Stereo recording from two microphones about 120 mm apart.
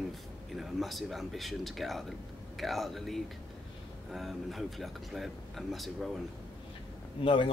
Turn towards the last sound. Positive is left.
turn(degrees=45)  # may be behind; listen again after turning